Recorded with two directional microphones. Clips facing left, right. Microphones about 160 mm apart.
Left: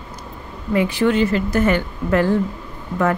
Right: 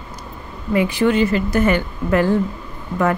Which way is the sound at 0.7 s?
10° right (ahead or behind).